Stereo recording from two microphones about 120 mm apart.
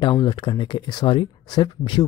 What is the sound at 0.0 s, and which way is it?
Speech, 40° left (ahead or behind).